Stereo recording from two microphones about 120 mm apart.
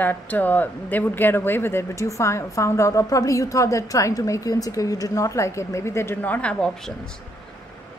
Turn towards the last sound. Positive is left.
turn(degrees=5)  # may be behind; listen again after turning